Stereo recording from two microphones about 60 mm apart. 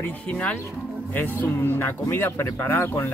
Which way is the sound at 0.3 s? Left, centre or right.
Left.